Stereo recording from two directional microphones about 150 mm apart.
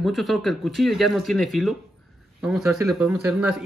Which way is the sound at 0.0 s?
Centre (ahead or behind).